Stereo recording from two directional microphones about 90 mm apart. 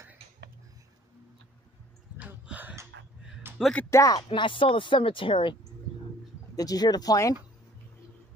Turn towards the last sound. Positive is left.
turn(degrees=40)  # may be behind; listen again after turning